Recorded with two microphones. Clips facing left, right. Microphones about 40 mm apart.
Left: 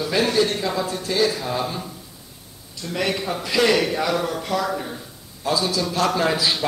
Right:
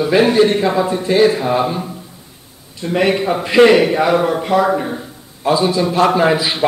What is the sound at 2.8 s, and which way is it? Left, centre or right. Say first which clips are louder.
A man's voice: right 9 dB; right.